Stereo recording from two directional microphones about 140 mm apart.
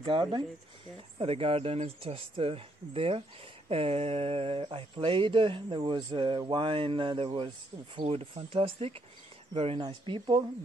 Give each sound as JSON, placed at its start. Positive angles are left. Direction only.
{"t": 0.0, "sound": "speech", "side_deg": -35}